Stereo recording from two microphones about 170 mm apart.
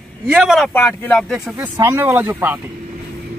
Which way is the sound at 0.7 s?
10° left (ahead or behind).